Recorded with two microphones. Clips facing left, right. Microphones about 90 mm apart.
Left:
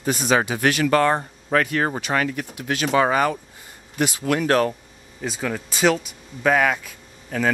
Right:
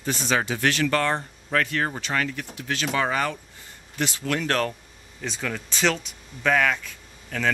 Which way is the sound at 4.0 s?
10° left (ahead or behind).